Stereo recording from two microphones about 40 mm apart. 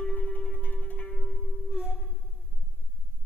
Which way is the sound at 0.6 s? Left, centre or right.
Left.